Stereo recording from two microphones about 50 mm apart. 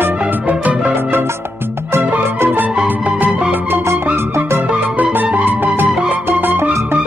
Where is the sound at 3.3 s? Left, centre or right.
Right.